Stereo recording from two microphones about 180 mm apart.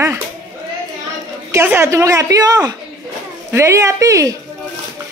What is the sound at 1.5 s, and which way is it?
Speech, 15° right (ahead or behind).